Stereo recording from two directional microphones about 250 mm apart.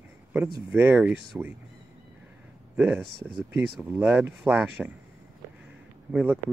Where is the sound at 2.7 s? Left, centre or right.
Centre.